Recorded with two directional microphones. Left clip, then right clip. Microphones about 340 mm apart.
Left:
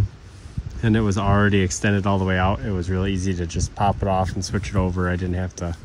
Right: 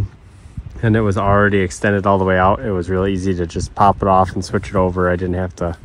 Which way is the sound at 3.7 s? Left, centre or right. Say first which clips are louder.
Right 9 dB; right.